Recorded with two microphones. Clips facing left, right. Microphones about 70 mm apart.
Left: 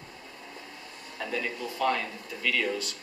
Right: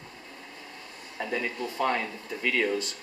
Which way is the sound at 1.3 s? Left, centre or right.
Right.